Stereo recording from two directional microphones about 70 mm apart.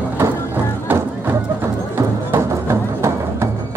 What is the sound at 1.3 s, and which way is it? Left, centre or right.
Music, right.